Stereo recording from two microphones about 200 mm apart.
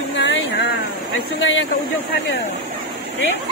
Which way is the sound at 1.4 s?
70° left (ahead or behind).